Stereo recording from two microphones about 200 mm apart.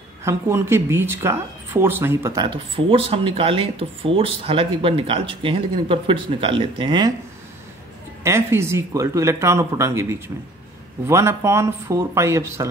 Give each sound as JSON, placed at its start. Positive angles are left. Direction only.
{"t": 0.2, "sound": "speech", "side_deg": -15}
{"t": 8.2, "sound": "speech", "side_deg": -15}